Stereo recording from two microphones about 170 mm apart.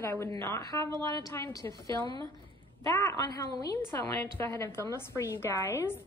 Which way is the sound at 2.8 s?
15° left (ahead or behind).